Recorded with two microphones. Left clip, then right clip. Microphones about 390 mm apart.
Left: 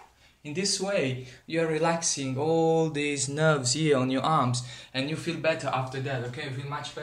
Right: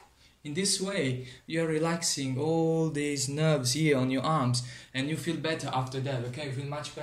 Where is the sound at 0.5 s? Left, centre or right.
Centre.